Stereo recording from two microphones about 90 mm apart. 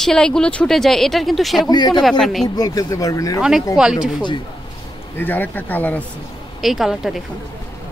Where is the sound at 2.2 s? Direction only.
Centre (ahead or behind).